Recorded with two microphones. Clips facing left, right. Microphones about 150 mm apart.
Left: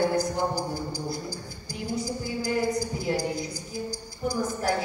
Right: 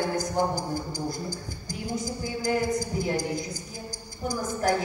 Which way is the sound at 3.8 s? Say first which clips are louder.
Even; 45° right (ahead or behind).